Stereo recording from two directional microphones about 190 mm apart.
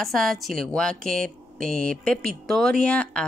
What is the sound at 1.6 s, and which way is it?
Speech, 45° right (ahead or behind).